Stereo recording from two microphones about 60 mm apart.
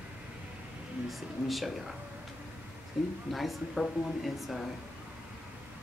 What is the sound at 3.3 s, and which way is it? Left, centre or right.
Speech, centre.